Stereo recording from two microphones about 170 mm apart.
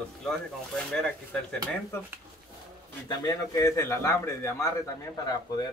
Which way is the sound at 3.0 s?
20° left (ahead or behind).